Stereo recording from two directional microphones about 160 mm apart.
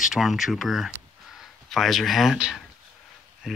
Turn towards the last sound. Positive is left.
turn(degrees=-5)  # may be behind; listen again after turning